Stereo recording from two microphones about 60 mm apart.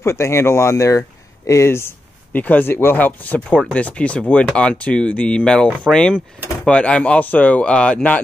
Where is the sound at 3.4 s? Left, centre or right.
Centre.